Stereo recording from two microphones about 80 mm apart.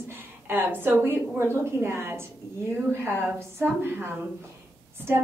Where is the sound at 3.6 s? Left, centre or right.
Right.